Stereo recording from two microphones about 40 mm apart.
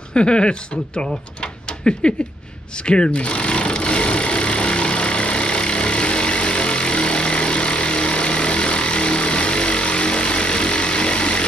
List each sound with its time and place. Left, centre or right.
0.1 s speech: left
2.8 s sewing machine: left